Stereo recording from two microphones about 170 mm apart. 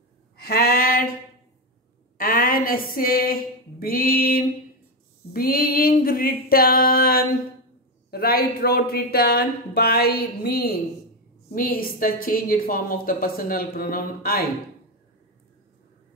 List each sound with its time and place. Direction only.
0.4 s a sound: 60° left (ahead or behind)
2.1 s a woman's voice: 55° left (ahead or behind)
11.4 s a woman's voice: 55° left (ahead or behind)